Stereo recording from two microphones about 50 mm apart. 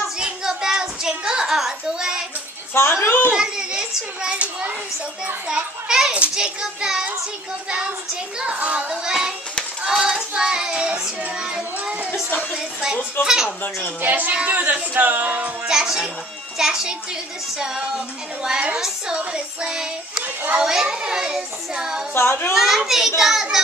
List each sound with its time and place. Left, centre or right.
0.2 s a sound: centre
2.7 s speech: left
3.3 s a child's voice: centre
5.5 s child singing: centre
8.4 s speech: right
8.8 s child singing: centre
11.4 s speech: right
12.1 s music: left
12.5 s child singing: centre
14.0 s speech: right
15.6 s child singing: centre
22.1 s a child's voice: left
22.5 s child singing: centre